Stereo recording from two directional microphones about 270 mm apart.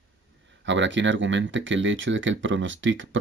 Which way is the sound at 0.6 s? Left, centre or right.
Right.